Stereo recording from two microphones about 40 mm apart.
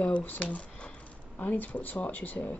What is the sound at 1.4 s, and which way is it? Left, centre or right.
Speech, left.